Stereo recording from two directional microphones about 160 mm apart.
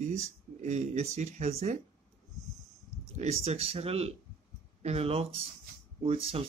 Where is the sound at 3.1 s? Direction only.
40° right (ahead or behind).